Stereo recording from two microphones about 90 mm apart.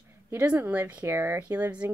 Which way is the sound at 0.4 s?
15° right (ahead or behind).